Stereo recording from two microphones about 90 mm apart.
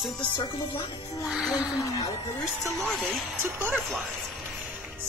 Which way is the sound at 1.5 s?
40° left (ahead or behind).